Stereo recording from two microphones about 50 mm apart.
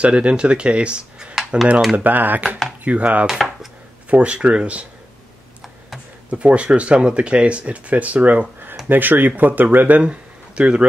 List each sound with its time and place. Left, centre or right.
0.0 s speech: right
2.0 s speech: right
3.3 s chopping: centre
4.1 s speech: right
6.3 s speech: right
8.8 s speech: right
10.0 s speech: right